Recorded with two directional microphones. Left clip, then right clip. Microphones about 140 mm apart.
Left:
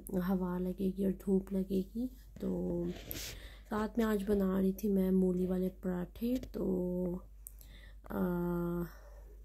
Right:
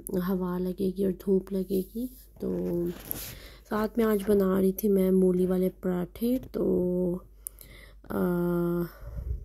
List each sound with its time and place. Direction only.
0.1 s a woman's voice: 30° right (ahead or behind)
3.6 s a woman's voice: 25° right (ahead or behind)
4.4 s a woman's voice: 40° right (ahead or behind)